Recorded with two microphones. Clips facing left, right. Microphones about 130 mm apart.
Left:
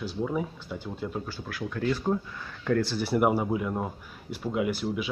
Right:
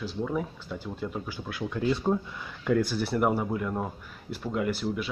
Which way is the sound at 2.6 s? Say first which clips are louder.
Right 1 dB; 5° right (ahead or behind).